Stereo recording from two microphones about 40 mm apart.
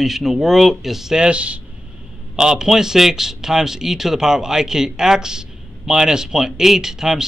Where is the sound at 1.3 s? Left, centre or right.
Right.